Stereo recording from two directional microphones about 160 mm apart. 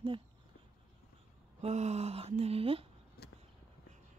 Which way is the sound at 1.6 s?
45° right (ahead or behind).